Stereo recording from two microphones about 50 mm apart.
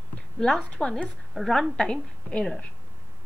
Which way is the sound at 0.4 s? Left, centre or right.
Centre.